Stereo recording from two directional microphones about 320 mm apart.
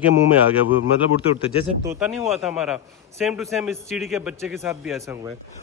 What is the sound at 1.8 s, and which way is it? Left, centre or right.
A man's voice, centre.